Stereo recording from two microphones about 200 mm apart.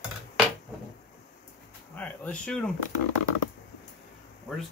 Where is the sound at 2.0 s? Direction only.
5° left (ahead or behind).